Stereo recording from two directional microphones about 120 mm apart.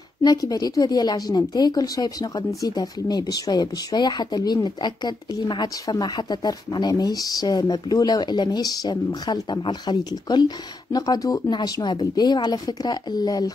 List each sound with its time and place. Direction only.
0.2 s a woman's voice: 30° left (ahead or behind)